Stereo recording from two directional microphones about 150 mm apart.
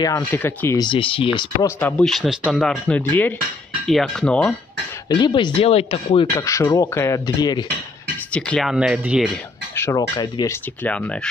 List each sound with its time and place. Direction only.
0.3 s speech: 10° left (ahead or behind)
0.7 s speech: 35° left (ahead or behind)
1.8 s speech: 10° left (ahead or behind)
3.1 s speech: 15° left (ahead or behind)
3.8 s speech: centre (ahead or behind)
5.2 s speech: 30° left (ahead or behind)
6.3 s speech: 20° left (ahead or behind)
8.3 s speech: 5° left (ahead or behind)
8.7 s speech: 5° right (ahead or behind)
9.8 s speech: 20° left (ahead or behind)